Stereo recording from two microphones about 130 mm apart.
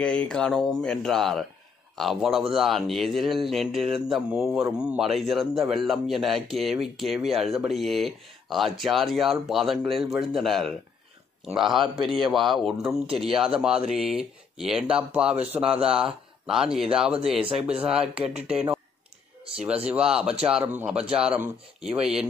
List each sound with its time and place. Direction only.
0.0 s speech: 10° left (ahead or behind)
18.1 s speech: 50° right (ahead or behind)
18.5 s speech: 5° right (ahead or behind)